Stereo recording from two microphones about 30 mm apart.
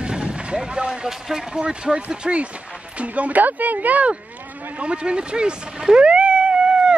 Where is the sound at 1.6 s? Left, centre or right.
Right.